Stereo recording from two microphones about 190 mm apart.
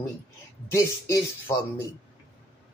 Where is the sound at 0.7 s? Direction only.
15° left (ahead or behind).